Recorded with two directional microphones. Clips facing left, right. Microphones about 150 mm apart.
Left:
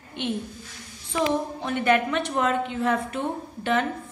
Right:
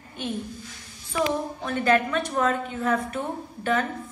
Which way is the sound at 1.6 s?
20° left (ahead or behind).